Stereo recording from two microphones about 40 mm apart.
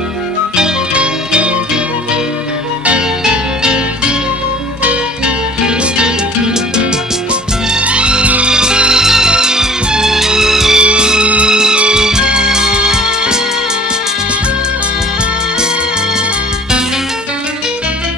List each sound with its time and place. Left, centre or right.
0.9 s music: right
3.3 s music: centre
5.9 s music: right
10.8 s music: right